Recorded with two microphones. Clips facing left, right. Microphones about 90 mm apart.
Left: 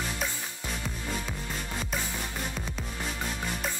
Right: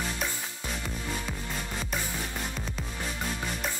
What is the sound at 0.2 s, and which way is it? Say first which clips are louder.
Music: left 1 dB; centre (ahead or behind).